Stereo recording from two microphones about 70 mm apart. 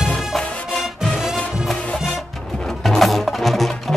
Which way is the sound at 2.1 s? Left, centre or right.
Centre.